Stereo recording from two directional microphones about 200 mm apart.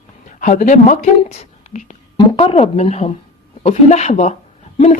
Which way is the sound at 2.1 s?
30° left (ahead or behind).